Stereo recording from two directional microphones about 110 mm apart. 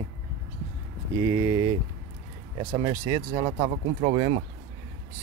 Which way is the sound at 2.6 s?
40° right (ahead or behind).